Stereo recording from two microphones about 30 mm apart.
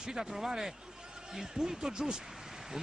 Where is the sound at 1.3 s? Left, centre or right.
Right.